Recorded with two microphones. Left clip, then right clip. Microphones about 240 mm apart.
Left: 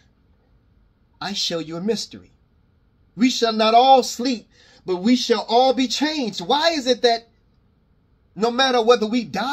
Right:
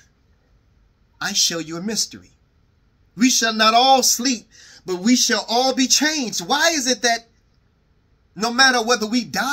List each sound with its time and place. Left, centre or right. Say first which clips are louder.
1.1 s speech: right 4 dB; centre
8.4 s speech: right 2 dB; centre